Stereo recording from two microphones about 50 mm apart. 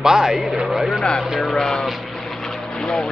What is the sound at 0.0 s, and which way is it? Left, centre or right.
Speech, centre.